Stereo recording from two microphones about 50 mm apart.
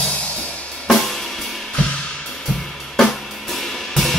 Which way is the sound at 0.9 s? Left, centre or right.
Centre.